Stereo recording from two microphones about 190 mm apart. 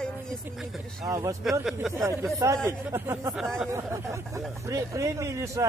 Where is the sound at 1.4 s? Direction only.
Centre (ahead or behind).